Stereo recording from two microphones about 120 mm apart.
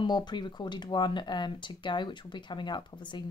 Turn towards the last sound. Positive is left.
turn(degrees=40)  # may be behind; listen again after turning